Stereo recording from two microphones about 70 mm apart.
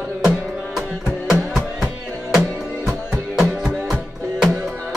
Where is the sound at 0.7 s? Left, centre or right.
Centre.